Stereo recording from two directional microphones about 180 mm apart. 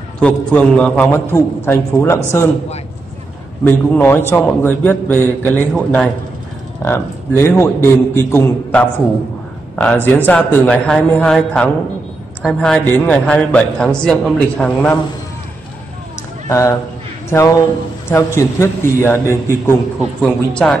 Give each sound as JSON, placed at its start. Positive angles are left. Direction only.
{"t": 0.2, "sound": "a man's voice", "side_deg": 5}
{"t": 3.6, "sound": "a man's voice", "side_deg": 10}
{"t": 16.4, "sound": "a man's voice", "side_deg": 15}
{"t": 20.2, "sound": "a man's voice", "side_deg": 5}